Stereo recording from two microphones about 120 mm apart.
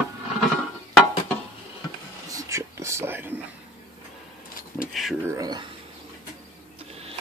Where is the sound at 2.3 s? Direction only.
25° right (ahead or behind).